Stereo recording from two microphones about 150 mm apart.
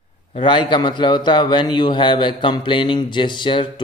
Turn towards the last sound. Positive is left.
turn(degrees=35)  # may be behind; listen again after turning